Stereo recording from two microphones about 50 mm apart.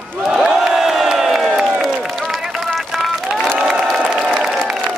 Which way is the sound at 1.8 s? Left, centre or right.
Centre.